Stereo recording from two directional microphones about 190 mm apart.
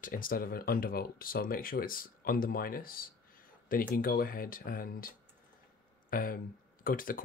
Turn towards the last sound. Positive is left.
turn(degrees=50)  # may be behind; listen again after turning